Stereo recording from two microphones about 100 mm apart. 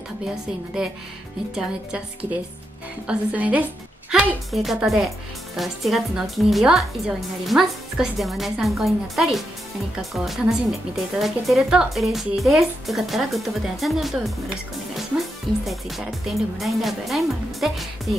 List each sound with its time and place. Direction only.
0.8 s a woman's voice: 5° right (ahead or behind)
3.1 s a woman's voice: 15° right (ahead or behind)
4.1 s a woman's voice: 5° right (ahead or behind)
15.0 s music: centre (ahead or behind)
16.3 s a woman's voice: centre (ahead or behind)